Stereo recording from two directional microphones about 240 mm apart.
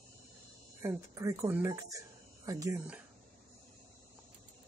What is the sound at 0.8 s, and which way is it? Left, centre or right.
Speech, centre.